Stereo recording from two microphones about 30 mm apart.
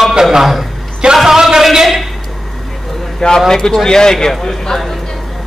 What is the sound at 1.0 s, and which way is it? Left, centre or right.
Speech, right.